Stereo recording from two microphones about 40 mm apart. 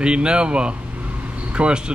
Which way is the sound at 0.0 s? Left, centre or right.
Right.